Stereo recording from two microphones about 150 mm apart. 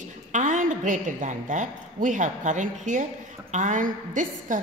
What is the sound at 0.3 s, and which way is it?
A woman's voice, 55° right (ahead or behind).